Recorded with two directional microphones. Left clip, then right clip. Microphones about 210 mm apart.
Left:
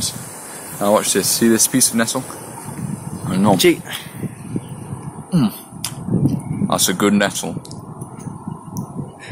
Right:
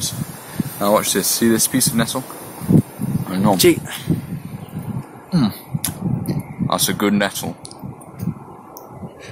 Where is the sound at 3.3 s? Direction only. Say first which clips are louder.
Left 2 dB; 10° left (ahead or behind).